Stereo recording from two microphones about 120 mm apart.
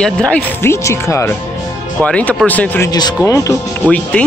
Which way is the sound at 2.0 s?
10° left (ahead or behind).